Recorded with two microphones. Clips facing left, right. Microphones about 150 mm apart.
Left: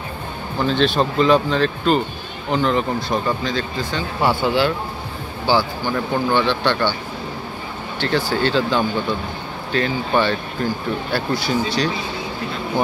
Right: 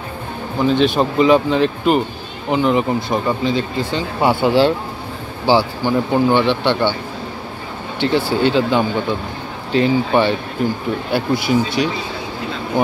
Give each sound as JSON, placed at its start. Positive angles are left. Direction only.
{"t": 0.6, "sound": "speech", "side_deg": -15}
{"t": 8.3, "sound": "speech", "side_deg": -15}